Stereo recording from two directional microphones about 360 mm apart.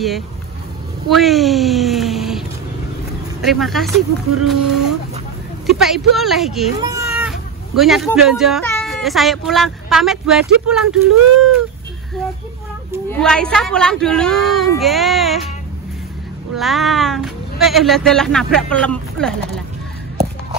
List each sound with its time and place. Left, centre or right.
1.1 s a sound: centre
3.4 s speech: centre
13.1 s speech: centre
16.5 s speech: centre